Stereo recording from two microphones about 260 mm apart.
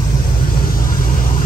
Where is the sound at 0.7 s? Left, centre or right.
Left.